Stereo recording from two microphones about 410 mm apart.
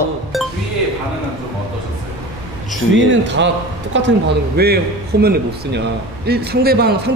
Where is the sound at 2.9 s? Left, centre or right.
Right.